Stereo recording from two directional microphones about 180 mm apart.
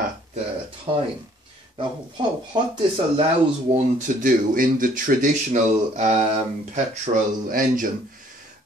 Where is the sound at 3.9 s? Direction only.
45° right (ahead or behind).